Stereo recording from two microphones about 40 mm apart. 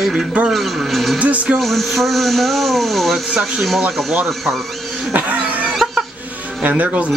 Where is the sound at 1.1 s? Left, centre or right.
Right.